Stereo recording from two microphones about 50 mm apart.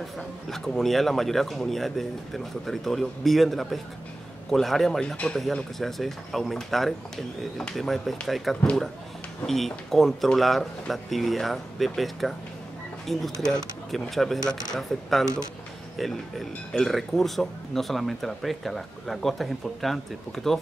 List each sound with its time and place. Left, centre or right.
0.5 s speech: centre
5.0 s speech: centre
5.8 s speech: centre